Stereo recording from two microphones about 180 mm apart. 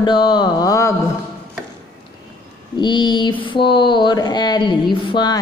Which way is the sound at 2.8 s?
25° left (ahead or behind).